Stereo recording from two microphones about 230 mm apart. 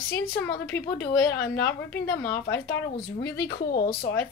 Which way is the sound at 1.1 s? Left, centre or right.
Left.